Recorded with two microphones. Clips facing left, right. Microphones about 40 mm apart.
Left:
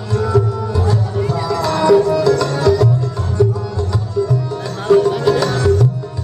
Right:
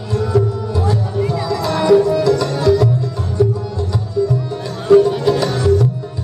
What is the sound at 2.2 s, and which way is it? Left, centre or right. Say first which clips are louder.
Music: left 1 dB; left.